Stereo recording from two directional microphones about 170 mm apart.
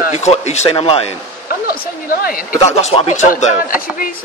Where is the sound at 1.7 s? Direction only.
60° left (ahead or behind).